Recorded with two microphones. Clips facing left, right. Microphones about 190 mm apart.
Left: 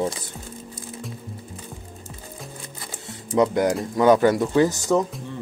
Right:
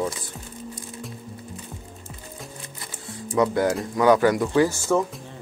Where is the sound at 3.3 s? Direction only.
20° left (ahead or behind).